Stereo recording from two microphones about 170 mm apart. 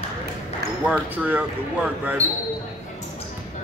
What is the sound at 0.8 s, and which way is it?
Speech, 10° right (ahead or behind).